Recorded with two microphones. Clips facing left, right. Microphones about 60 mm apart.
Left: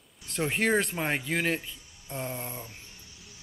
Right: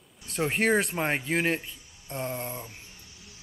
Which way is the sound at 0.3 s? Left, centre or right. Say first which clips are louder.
Right 2 dB; centre.